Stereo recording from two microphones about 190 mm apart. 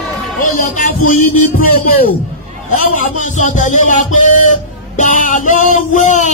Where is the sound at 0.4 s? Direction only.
45° left (ahead or behind).